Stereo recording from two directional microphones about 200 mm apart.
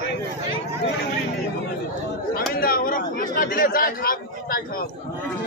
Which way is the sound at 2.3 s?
45° left (ahead or behind).